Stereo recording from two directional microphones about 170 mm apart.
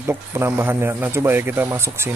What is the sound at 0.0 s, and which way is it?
Speech, 15° right (ahead or behind).